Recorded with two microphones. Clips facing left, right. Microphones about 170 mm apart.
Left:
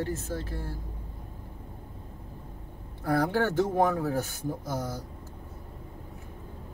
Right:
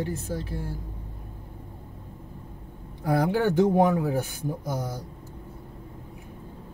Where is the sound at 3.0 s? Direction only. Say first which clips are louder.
Right 2 dB; 15° right (ahead or behind).